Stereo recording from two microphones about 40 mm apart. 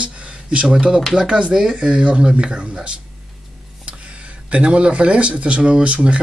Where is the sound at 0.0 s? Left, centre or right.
Right.